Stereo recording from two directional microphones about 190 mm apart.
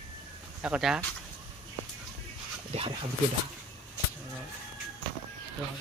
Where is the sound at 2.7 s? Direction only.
30° right (ahead or behind).